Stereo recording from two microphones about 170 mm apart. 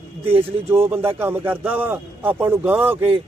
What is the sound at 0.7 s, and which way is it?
Speech, 15° right (ahead or behind).